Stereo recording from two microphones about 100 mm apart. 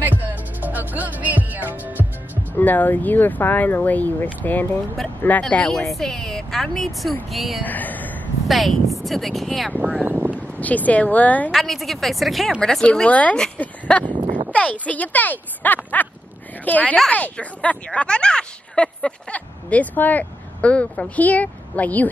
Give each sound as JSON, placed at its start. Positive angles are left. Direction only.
{"t": 0.2, "sound": "music", "side_deg": -15}
{"t": 2.5, "sound": "speech", "side_deg": 20}
{"t": 5.4, "sound": "a woman's voice", "side_deg": 10}
{"t": 7.6, "sound": "a sound", "side_deg": 15}
{"t": 8.5, "sound": "a woman's voice", "side_deg": 0}
{"t": 9.8, "sound": "speech", "side_deg": -15}
{"t": 10.6, "sound": "speech", "side_deg": 15}
{"t": 11.5, "sound": "a woman's voice", "side_deg": 0}
{"t": 14.0, "sound": "a sound", "side_deg": -55}
{"t": 14.5, "sound": "speech", "side_deg": 15}